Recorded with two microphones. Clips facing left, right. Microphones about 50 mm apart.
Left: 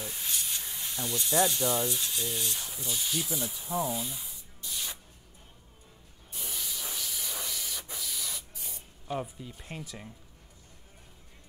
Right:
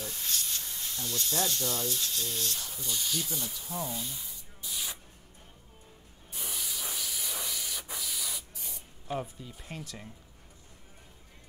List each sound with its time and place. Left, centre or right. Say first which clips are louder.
0.0 s speech: even; centre
4.6 s spray: even; centre
6.3 s spray: even; centre